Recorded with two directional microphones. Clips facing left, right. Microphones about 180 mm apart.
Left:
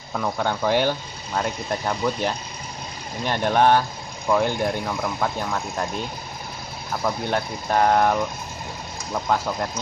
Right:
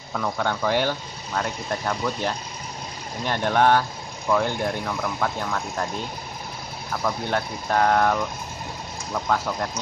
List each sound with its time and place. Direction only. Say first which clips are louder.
0.1 s speech: left 1 dB; 10° left (ahead or behind)
7.2 s speech: left 1 dB; 15° left (ahead or behind)